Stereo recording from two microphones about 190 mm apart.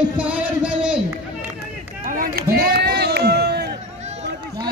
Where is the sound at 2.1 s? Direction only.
50° right (ahead or behind).